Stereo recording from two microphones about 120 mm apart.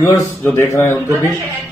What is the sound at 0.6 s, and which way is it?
Speech, 25° left (ahead or behind).